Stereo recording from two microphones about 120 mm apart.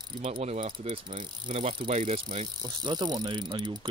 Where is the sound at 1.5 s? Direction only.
55° right (ahead or behind).